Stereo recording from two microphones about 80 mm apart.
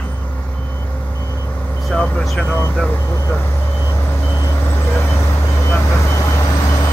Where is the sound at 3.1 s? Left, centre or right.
Left.